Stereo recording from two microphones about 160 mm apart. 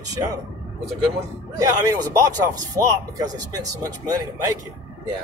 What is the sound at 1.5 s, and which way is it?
A man's voice, 20° right (ahead or behind).